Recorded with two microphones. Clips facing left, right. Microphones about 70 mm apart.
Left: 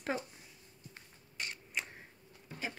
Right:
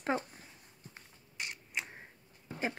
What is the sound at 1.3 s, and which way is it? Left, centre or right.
Creak, centre.